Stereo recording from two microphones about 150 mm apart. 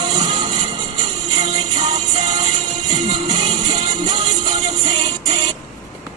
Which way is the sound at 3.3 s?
30° right (ahead or behind).